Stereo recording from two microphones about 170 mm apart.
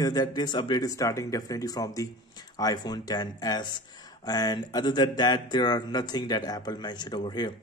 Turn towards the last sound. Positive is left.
turn(degrees=25)  # may be behind; listen again after turning